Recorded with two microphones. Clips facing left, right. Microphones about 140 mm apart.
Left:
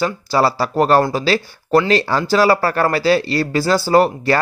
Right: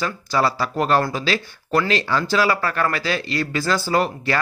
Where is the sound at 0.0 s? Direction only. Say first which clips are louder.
Left 5 dB; 30° left (ahead or behind).